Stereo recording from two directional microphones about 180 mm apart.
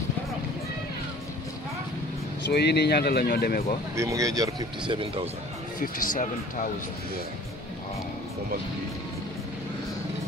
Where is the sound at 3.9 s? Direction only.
15° right (ahead or behind).